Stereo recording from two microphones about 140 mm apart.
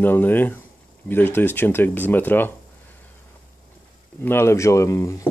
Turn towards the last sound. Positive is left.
turn(degrees=20)  # may be behind; listen again after turning